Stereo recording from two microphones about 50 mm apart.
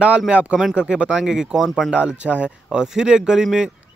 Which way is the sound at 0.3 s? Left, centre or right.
Right.